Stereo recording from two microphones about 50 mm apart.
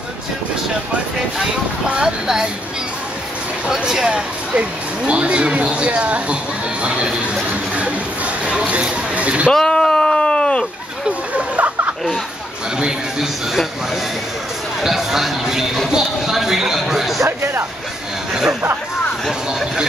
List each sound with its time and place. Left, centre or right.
1.4 s speech: centre
3.6 s speech: centre
8.5 s speech: right
9.5 s a sound: centre
11.1 s speech: right
12.7 s speech: centre
14.8 s speech: centre
18.3 s speech: centre